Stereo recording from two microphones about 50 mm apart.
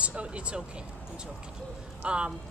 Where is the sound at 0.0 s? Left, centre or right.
Right.